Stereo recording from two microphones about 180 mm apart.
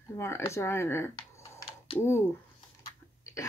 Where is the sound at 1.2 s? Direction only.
25° left (ahead or behind).